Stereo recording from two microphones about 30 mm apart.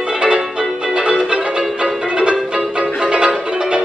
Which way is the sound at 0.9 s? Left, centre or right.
Right.